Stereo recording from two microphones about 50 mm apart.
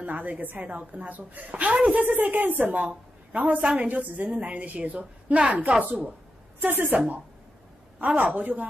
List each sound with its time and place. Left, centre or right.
0.0 s a woman's voice: right
6.6 s a woman's voice: right
8.0 s a woman's voice: right